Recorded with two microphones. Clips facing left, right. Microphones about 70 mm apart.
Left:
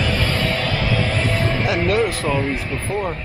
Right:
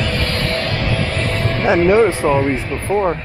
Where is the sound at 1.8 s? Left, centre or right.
Right.